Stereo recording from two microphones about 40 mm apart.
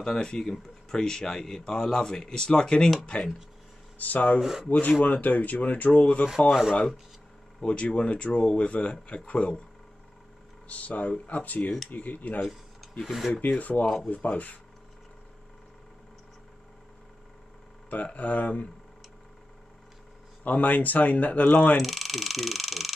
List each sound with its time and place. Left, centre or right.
0.0 s speech: centre
4.0 s speech: left
4.4 s speech: centre
4.6 s speech: left
5.9 s speech: left
7.6 s speech: left
10.7 s speech: left
12.4 s rub: centre
13.3 s speech: left
18.1 s speech: left
20.4 s speech: left
21.7 s alarm: centre